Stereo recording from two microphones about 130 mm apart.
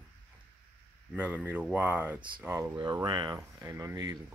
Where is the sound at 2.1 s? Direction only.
40° right (ahead or behind).